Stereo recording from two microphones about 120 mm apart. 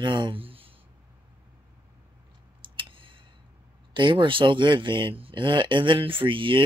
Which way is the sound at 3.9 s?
40° right (ahead or behind).